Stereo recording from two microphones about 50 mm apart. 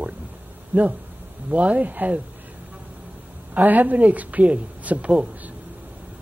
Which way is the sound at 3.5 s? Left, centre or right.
Right.